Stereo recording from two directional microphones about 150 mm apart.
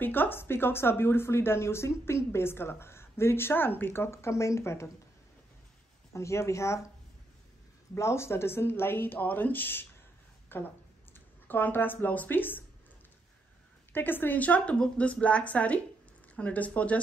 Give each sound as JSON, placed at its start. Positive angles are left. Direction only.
{"t": 0.0, "sound": "speech", "side_deg": 15}
{"t": 6.1, "sound": "speech", "side_deg": 20}
{"t": 7.9, "sound": "speech", "side_deg": 20}
{"t": 13.9, "sound": "speech", "side_deg": 15}